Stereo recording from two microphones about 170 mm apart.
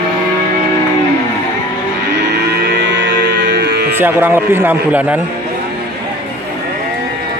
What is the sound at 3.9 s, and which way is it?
A man's voice, 10° right (ahead or behind).